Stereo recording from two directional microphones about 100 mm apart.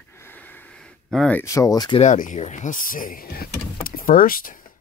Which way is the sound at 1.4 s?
35° left (ahead or behind).